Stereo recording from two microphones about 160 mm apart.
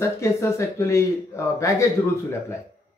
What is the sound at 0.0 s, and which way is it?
Speech, 15° left (ahead or behind).